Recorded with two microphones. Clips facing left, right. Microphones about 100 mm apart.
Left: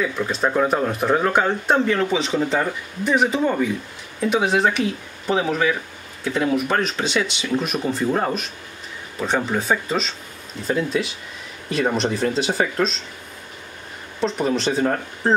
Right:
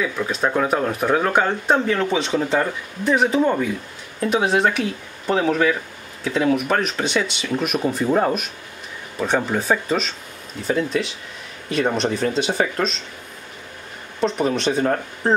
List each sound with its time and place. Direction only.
0.0 s speech: centre (ahead or behind)
14.2 s speech: centre (ahead or behind)